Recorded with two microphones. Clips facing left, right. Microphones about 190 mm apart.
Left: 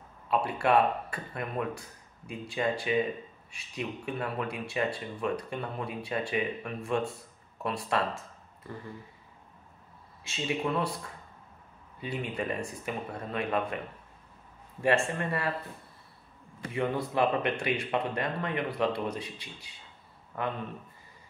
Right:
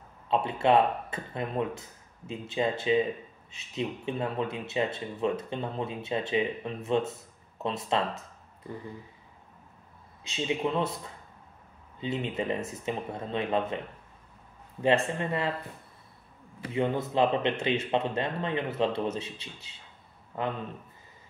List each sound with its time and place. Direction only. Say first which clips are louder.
0.3 s speech: right 2 dB; 25° right (ahead or behind)
10.2 s speech: right 2 dB; 20° right (ahead or behind)
12.0 s speech: right 3 dB; 20° right (ahead or behind)
14.8 s speech: right 2 dB; 20° right (ahead or behind)
16.7 s speech: right 2 dB; 20° right (ahead or behind)